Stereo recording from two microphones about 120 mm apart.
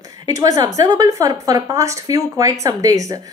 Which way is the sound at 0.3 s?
30° right (ahead or behind).